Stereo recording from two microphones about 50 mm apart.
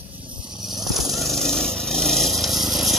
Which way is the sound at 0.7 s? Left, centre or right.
Centre.